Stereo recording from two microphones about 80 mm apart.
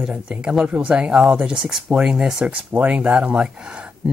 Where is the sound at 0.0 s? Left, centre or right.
Centre.